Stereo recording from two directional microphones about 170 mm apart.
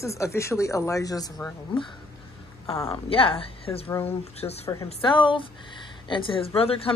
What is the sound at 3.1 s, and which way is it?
Speech, 30° left (ahead or behind).